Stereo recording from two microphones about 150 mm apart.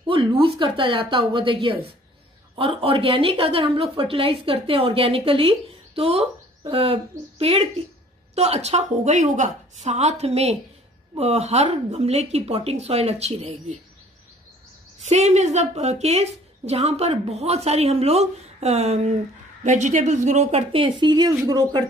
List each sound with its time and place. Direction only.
0.1 s a woman's voice: 35° right (ahead or behind)
15.0 s a woman's voice: 50° right (ahead or behind); by 21.8 s 25° right (ahead or behind)